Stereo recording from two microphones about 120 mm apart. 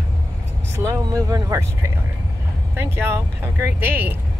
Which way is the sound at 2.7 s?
20° right (ahead or behind).